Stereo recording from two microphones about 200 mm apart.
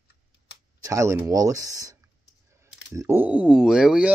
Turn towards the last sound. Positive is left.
turn(degrees=-5)  # may be behind; listen again after turning